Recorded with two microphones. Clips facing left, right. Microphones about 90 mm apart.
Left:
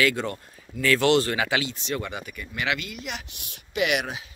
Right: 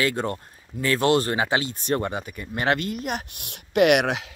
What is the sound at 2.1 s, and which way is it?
Speech, 30° right (ahead or behind).